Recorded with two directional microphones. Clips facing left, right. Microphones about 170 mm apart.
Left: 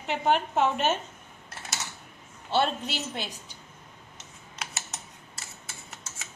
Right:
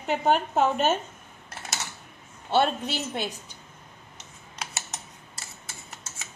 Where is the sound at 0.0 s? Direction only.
45° right (ahead or behind).